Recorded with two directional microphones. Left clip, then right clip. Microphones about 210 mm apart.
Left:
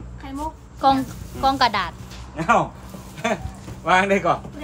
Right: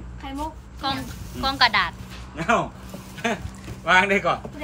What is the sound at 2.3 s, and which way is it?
Speech, 45° left (ahead or behind).